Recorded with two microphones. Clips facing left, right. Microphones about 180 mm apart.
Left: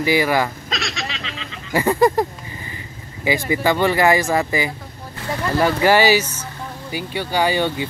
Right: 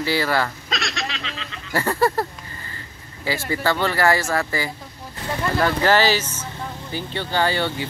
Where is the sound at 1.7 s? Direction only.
15° left (ahead or behind).